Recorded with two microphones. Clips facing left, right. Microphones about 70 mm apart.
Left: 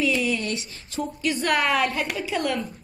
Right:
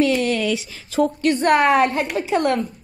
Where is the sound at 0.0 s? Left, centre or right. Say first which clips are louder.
Right 5 dB; right.